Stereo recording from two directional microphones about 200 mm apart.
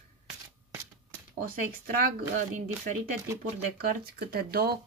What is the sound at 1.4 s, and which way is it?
Speech, 45° right (ahead or behind).